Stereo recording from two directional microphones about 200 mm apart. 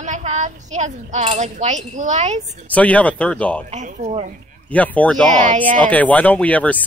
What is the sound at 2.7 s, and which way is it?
Speech, 5° left (ahead or behind).